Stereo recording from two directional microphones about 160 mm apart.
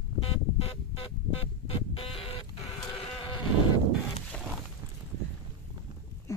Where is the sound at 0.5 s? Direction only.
40° left (ahead or behind).